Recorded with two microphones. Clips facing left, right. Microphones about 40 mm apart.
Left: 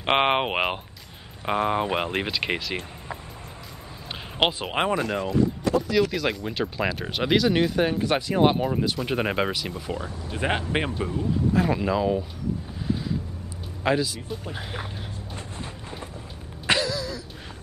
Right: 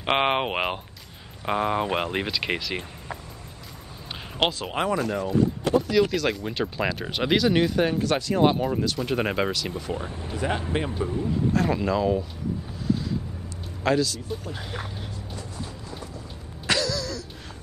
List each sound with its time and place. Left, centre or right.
0.0 s speech: centre
4.5 s speech: left
5.0 s speech: left
5.8 s speech: centre
8.0 s speech: centre
10.3 s speech: left
11.1 s speech: centre
13.8 s speech: centre
16.6 s a sound: left